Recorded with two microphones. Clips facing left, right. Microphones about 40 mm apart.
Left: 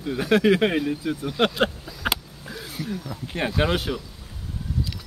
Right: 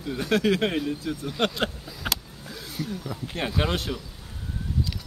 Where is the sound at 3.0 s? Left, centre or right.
Centre.